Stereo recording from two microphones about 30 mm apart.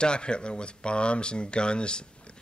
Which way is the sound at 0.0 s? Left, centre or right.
Left.